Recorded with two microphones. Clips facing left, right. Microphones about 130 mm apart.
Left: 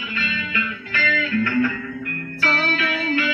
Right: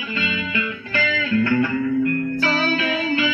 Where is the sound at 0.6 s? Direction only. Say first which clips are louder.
Right 1 dB; 30° right (ahead or behind).